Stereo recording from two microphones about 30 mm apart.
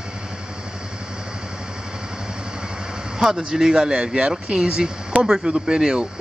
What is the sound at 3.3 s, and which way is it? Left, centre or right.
Speech, centre.